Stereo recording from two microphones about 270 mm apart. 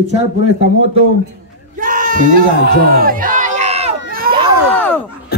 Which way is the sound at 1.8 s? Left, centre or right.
Right.